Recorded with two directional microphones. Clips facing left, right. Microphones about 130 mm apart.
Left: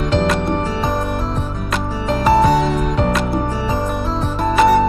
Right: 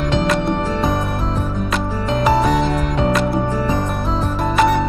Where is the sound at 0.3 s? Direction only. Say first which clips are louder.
Even; centre (ahead or behind).